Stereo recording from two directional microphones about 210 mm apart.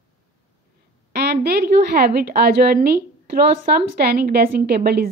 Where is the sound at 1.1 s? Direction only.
50° right (ahead or behind).